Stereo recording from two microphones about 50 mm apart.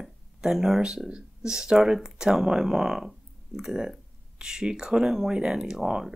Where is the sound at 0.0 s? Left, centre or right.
Centre.